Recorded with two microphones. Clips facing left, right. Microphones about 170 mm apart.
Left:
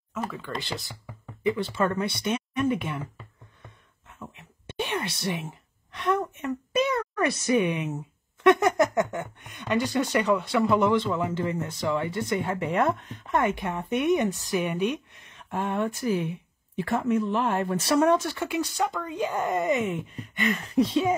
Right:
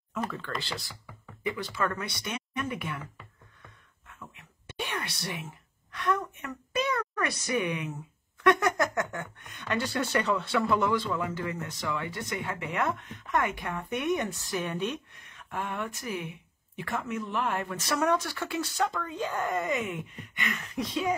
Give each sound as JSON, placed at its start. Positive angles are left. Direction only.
{"t": 0.1, "sound": "speech", "side_deg": 5}
{"t": 0.6, "sound": "speech", "side_deg": 20}